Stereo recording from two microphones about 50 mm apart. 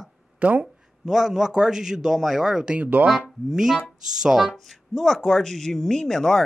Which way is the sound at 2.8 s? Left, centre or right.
Right.